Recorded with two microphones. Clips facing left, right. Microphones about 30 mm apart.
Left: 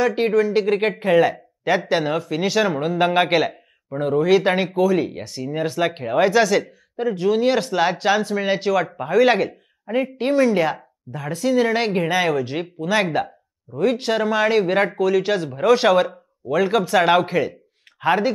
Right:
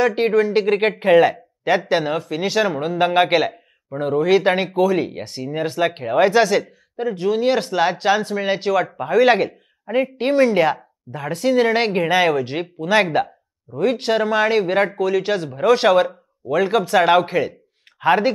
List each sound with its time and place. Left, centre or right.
0.0 s speech: centre
1.8 s a man's voice: centre
10.1 s speech: right
18.0 s speech: centre